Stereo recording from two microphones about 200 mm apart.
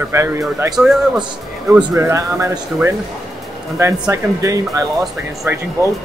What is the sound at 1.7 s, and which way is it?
Speech, 15° right (ahead or behind).